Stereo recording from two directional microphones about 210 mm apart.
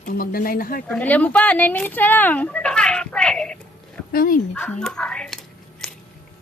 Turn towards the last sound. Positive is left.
turn(degrees=5)  # may be behind; listen again after turning